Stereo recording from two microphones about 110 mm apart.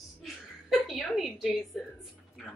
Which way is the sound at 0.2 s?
5° right (ahead or behind).